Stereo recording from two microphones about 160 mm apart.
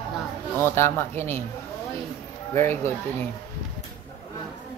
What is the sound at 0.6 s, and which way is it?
Speech, 15° left (ahead or behind).